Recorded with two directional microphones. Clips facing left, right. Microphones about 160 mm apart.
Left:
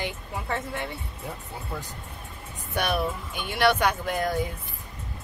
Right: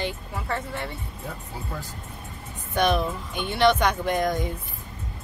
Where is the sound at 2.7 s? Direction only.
10° left (ahead or behind).